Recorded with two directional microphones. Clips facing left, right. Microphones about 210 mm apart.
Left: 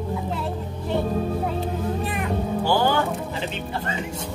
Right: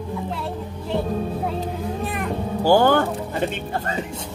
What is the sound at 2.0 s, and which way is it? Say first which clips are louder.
Cat: right 1 dB; centre (ahead or behind).